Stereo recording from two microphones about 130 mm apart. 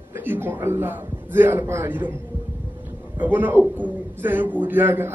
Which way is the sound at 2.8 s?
15° right (ahead or behind).